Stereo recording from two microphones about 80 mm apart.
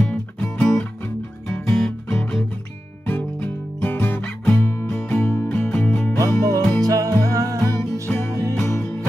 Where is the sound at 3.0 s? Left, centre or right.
Centre.